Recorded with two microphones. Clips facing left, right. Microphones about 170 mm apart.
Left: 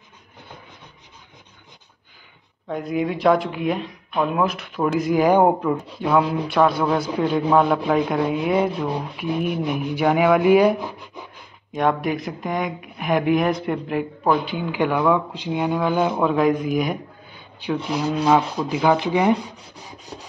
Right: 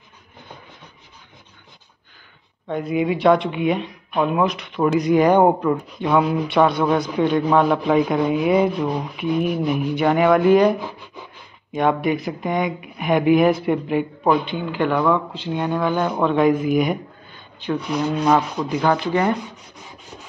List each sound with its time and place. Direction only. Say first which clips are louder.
2.7 s a man's voice: right 2 dB; centre (ahead or behind)
17.3 s a sound: right 1 dB; 10° left (ahead or behind)
17.9 s a man's voice: even; 5° left (ahead or behind)
18.9 s sanding: left 1 dB; 10° left (ahead or behind)
19.5 s rub: left 1 dB; 35° left (ahead or behind)